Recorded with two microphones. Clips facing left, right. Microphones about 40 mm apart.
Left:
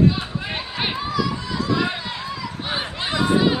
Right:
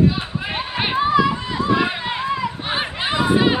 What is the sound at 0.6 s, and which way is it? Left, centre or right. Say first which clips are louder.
Run: right 5 dB; right.